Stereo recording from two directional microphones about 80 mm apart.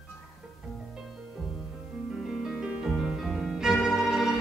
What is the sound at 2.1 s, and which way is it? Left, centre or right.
Music, centre.